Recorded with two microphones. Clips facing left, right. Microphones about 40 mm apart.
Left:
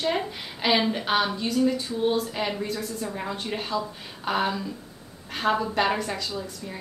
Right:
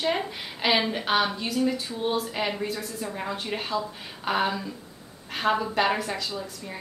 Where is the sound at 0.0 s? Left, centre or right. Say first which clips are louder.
Even; centre.